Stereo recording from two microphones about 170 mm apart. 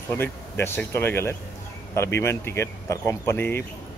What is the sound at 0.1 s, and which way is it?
Speech, 15° left (ahead or behind).